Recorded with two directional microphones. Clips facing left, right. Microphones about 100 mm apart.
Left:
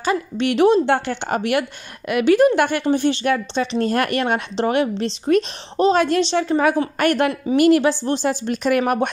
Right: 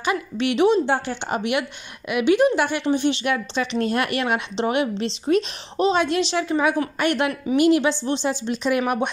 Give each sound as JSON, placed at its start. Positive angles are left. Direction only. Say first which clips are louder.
{"t": 0.0, "sound": "speech", "louder": "left 3 dB", "side_deg": 35}